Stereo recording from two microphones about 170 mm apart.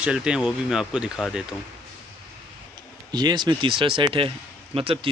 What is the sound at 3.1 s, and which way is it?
Speech, 25° right (ahead or behind).